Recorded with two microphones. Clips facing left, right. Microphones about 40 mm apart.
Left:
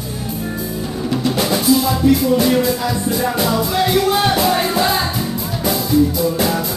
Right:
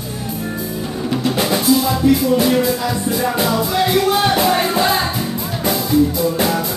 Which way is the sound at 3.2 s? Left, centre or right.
Centre.